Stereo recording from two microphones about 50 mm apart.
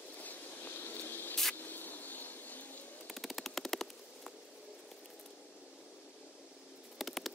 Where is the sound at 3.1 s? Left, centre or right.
Centre.